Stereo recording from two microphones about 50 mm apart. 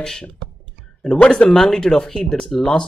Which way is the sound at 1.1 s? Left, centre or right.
Left.